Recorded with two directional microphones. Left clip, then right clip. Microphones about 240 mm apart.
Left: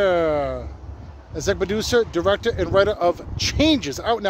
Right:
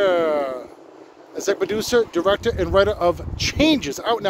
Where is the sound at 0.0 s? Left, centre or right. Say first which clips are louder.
Even; centre.